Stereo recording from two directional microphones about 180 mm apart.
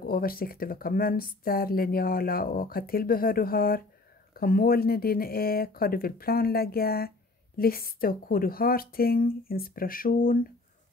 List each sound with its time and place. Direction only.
0.0 s a woman's voice: 55° left (ahead or behind)